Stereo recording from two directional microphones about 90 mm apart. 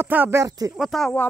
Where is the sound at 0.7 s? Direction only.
Centre (ahead or behind).